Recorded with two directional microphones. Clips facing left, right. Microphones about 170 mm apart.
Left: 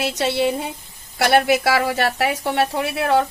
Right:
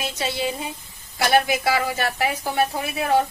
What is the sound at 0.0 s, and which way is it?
A woman's voice, 70° left (ahead or behind).